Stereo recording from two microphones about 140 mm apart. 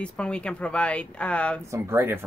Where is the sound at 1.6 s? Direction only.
20° right (ahead or behind).